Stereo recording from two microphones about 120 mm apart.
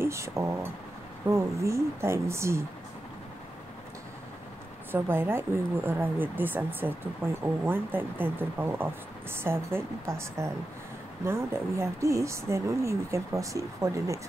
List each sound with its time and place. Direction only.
0.0 s speech: 25° right (ahead or behind)
4.9 s speech: 15° right (ahead or behind)